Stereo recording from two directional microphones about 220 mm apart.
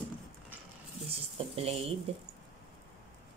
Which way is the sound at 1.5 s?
25° right (ahead or behind).